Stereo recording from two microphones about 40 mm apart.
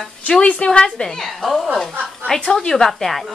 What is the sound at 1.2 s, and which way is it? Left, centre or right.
A woman's voice, centre.